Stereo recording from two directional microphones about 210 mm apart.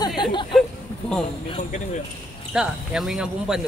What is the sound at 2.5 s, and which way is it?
Speech, 5° right (ahead or behind).